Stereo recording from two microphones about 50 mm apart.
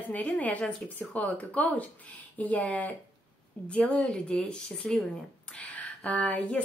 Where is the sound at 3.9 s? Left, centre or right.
Centre.